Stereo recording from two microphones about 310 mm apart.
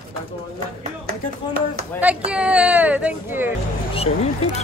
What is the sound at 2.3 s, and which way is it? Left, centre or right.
Speech, centre.